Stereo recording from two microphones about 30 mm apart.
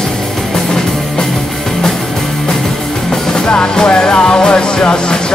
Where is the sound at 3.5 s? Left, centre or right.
Left.